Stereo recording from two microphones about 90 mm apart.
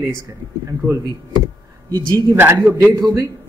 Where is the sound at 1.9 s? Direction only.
45° right (ahead or behind).